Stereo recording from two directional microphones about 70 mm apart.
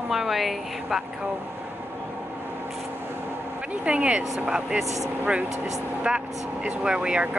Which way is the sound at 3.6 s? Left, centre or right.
Centre.